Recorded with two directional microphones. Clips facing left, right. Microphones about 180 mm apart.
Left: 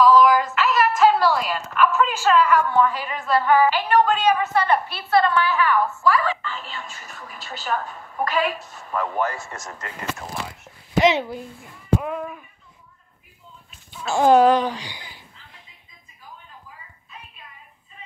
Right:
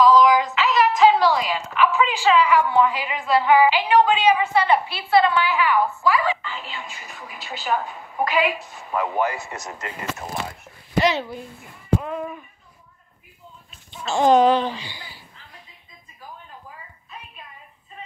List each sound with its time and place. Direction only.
0.0 s female singing: 5° left (ahead or behind)
0.6 s music: centre (ahead or behind)
2.1 s a woman's voice: 10° right (ahead or behind)
11.0 s a woman's voice: 15° left (ahead or behind)
14.0 s a woman's voice: 10° left (ahead or behind)